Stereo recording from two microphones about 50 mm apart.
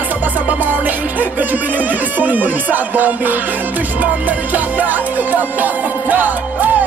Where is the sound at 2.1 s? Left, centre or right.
Right.